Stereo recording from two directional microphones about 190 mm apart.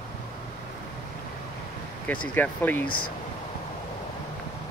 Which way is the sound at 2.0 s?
10° left (ahead or behind).